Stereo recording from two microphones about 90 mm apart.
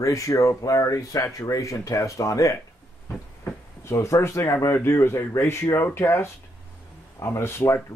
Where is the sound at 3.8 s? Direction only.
35° left (ahead or behind).